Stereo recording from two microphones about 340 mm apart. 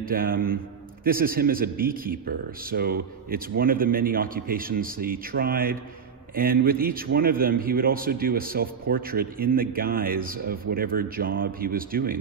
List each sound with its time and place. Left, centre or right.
0.1 s a man's voice: right